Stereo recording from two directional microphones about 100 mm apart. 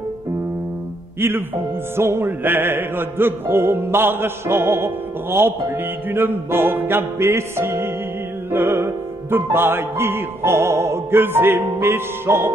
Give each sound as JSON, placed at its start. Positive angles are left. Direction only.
{"t": 1.2, "sound": "music", "side_deg": -25}